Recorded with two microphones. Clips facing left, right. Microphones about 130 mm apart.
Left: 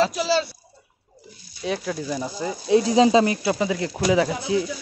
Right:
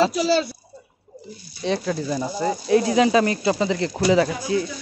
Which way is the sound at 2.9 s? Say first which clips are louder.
Left 3 dB; 25° left (ahead or behind).